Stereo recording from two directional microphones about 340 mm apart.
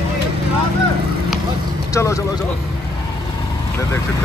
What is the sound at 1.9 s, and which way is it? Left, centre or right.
Speech, centre.